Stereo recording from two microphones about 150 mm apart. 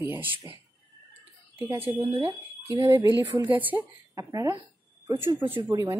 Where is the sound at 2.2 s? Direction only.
25° right (ahead or behind).